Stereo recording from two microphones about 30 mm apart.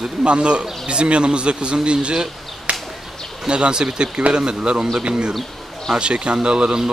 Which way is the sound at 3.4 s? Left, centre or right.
Right.